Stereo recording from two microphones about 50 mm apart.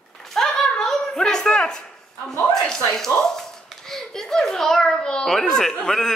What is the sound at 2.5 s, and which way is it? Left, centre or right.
A woman's voice, centre.